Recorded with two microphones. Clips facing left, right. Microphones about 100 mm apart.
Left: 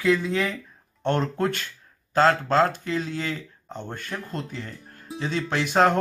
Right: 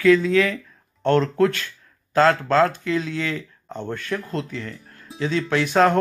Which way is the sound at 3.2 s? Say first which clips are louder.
Right 3 dB; 50° right (ahead or behind).